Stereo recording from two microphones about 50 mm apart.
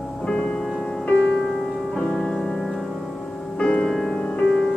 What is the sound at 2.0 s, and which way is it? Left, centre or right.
Music, centre.